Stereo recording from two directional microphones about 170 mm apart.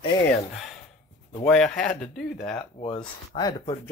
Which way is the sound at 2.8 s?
25° left (ahead or behind).